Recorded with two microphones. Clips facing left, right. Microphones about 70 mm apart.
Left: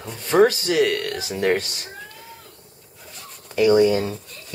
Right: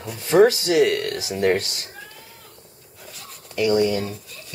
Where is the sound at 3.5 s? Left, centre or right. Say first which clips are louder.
Left 4 dB; left.